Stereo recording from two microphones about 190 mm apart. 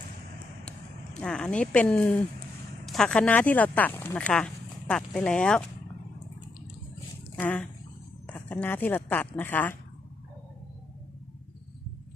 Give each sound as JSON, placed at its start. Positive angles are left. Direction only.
{"t": 1.2, "sound": "speech", "side_deg": 5}
{"t": 7.3, "sound": "speech", "side_deg": 10}